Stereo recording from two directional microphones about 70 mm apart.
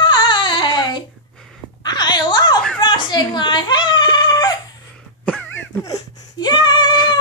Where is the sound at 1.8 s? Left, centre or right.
Left.